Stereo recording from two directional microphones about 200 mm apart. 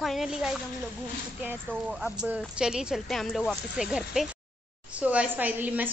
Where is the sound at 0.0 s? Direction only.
Centre (ahead or behind).